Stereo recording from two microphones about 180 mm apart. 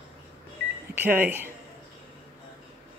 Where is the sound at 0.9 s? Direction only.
10° right (ahead or behind).